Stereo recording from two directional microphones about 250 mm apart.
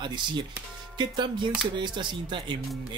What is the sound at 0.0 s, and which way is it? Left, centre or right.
Speech, centre.